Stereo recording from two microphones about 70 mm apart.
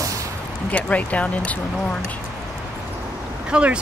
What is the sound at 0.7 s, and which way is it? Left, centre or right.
Speech, centre.